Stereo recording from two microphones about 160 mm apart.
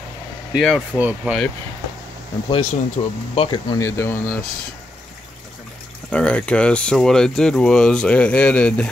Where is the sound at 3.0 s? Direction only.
40° left (ahead or behind).